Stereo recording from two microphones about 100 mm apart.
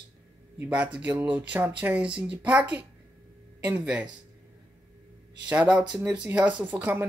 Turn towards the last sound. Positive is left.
turn(degrees=-15)  # may be behind; listen again after turning